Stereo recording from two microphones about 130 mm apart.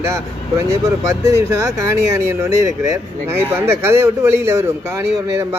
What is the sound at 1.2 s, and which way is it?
Speech, 20° right (ahead or behind).